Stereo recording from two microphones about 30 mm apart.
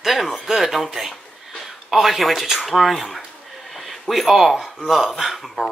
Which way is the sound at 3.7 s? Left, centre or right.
Centre.